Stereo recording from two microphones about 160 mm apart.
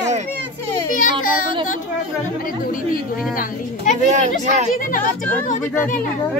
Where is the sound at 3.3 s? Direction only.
55° left (ahead or behind).